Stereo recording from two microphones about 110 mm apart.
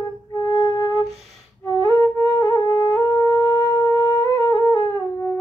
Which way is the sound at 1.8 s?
35° left (ahead or behind).